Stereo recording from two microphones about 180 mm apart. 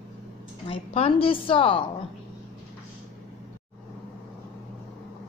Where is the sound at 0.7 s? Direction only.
30° left (ahead or behind).